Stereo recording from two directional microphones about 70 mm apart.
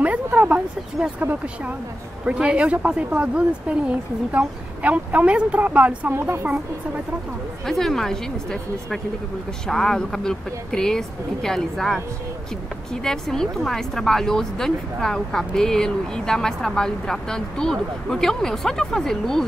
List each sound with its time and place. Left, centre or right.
0.0 s a sound: right
1.2 s speech: right
6.1 s a woman's voice: right
7.6 s a woman's voice: centre